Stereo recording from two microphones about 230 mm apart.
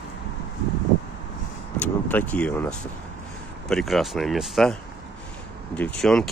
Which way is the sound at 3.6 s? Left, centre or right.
Centre.